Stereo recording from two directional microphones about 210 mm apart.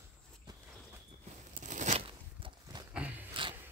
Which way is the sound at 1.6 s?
35° right (ahead or behind).